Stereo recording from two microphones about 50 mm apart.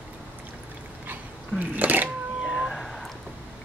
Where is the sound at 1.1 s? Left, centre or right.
Right.